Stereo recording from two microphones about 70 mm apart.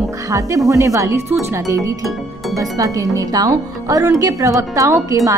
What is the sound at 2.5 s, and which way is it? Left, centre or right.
A woman's voice, right.